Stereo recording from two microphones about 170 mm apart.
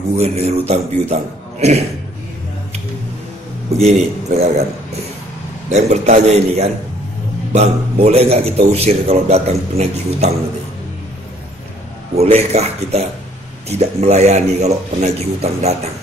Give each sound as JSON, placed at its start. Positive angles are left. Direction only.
{"t": 0.2, "sound": "a man's voice", "side_deg": -40}
{"t": 3.7, "sound": "a man's voice", "side_deg": -40}
{"t": 5.7, "sound": "a man's voice", "side_deg": -40}
{"t": 12.2, "sound": "a man's voice", "side_deg": -40}